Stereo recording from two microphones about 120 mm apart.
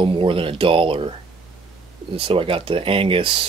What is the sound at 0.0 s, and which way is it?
Speech, 45° right (ahead or behind).